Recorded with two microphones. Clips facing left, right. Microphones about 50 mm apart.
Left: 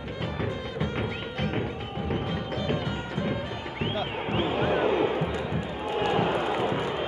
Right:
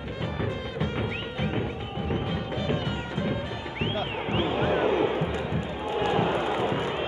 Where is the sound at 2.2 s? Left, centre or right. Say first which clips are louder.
Even; left.